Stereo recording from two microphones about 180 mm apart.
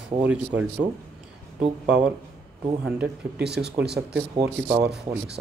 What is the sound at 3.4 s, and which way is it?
Speech, 65° right (ahead or behind).